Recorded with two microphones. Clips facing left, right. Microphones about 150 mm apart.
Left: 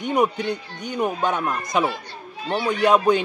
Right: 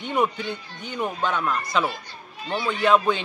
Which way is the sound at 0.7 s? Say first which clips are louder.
Left 4 dB; 45° left (ahead or behind).